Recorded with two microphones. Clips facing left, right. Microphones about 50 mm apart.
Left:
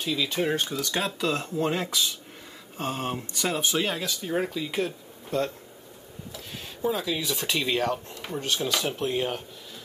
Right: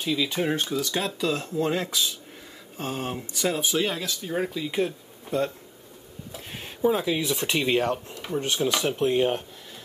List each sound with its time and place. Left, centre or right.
0.0 s speech: centre
6.3 s a sound: right
6.9 s speech: right
8.1 s speech: centre
8.4 s speech: centre